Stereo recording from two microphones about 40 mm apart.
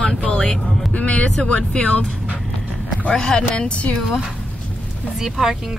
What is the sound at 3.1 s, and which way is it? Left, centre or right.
Speech, centre.